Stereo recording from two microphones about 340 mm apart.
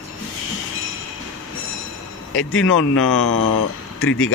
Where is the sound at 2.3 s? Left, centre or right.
Left.